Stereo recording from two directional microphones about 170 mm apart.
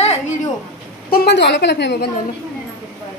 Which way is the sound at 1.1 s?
70° left (ahead or behind).